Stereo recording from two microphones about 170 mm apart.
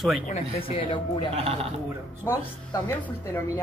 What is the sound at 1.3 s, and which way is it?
Speech, 35° right (ahead or behind).